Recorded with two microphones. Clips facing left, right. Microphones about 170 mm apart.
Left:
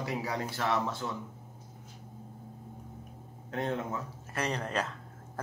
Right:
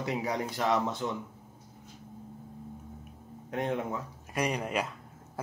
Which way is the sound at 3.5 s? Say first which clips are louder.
Right 2 dB; 15° right (ahead or behind).